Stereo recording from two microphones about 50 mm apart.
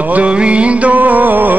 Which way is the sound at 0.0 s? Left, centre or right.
Right.